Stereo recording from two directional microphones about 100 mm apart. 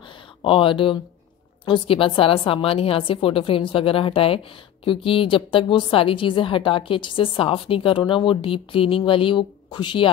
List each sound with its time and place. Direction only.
0.4 s a woman's voice: 60° left (ahead or behind)